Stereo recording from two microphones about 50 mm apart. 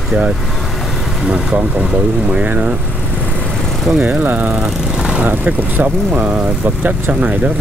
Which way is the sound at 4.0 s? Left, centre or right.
Right.